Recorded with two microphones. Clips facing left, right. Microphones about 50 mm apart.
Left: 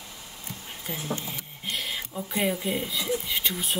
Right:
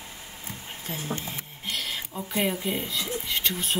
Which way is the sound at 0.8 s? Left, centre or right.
Centre.